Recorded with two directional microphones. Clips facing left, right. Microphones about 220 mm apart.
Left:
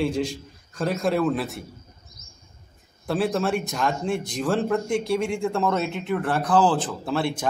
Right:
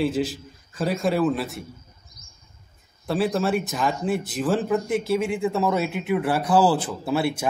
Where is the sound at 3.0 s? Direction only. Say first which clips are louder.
Right 1 dB; centre (ahead or behind).